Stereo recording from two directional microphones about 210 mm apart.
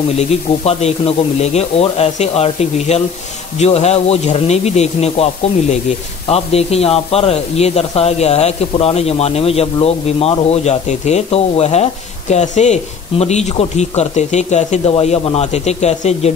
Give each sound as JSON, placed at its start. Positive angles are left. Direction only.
{"t": 0.2, "sound": "speech", "side_deg": 30}